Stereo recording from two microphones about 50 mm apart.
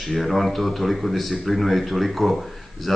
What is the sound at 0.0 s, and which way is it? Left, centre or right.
Speech, centre.